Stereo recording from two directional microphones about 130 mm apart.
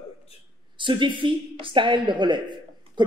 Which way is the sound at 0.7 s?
35° right (ahead or behind).